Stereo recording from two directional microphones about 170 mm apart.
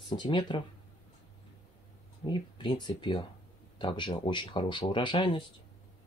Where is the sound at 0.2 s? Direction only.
30° left (ahead or behind).